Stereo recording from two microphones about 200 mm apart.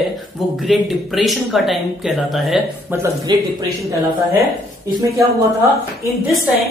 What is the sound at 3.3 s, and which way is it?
Speech, 20° right (ahead or behind).